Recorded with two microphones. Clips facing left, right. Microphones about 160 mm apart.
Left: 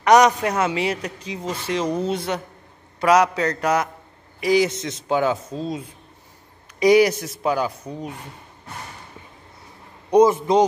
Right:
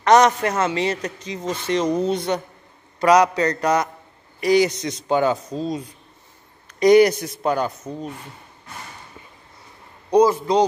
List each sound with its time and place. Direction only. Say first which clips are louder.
0.0 s a man's voice: even; 10° left (ahead or behind)
10.1 s a man's voice: left 1 dB; 20° left (ahead or behind)